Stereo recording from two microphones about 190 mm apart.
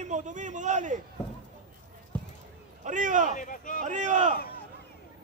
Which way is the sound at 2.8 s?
40° right (ahead or behind).